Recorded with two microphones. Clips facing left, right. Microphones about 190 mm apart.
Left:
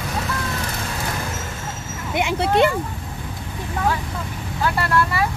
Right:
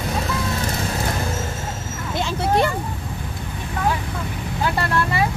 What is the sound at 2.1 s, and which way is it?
Speech, 20° left (ahead or behind).